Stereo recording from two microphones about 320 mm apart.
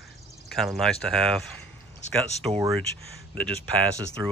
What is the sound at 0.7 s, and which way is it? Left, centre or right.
Speech, centre.